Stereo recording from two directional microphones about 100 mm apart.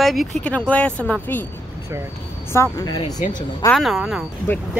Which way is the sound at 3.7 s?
Centre (ahead or behind).